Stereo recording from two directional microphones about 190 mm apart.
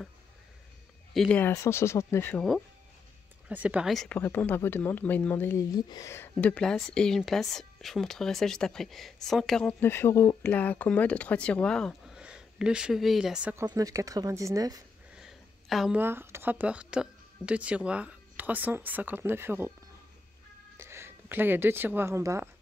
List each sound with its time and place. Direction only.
1.1 s speech: 5° left (ahead or behind)
1.5 s speech: 15° left (ahead or behind)
3.4 s speech: 5° right (ahead or behind)
13.7 s speech: 20° right (ahead or behind)
15.1 s speech: centre (ahead or behind)
20.7 s speech: 15° right (ahead or behind)